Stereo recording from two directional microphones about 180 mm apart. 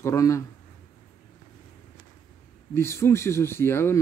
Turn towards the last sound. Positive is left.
turn(degrees=15)  # may be behind; listen again after turning